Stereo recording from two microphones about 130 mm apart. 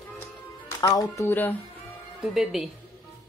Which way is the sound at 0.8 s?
25° left (ahead or behind).